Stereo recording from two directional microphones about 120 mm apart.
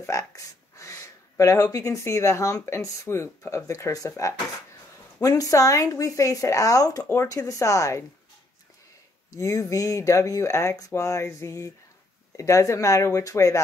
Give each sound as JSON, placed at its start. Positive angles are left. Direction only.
{"t": 0.0, "sound": "speech", "side_deg": 25}
{"t": 9.3, "sound": "speech", "side_deg": 25}